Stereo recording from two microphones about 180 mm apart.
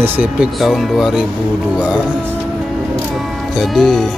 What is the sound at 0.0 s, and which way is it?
Speech, 5° right (ahead or behind).